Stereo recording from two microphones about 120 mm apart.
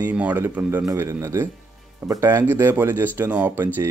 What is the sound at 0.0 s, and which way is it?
Speech, 15° right (ahead or behind).